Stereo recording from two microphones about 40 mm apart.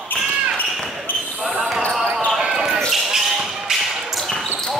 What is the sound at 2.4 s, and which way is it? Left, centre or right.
Basketball bounce, centre.